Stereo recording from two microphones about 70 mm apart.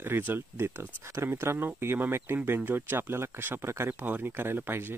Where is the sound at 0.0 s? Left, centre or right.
Right.